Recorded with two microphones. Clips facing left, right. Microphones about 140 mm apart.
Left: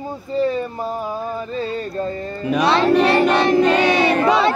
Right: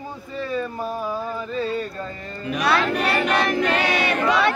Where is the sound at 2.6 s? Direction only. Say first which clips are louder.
Left 6 dB; 30° left (ahead or behind).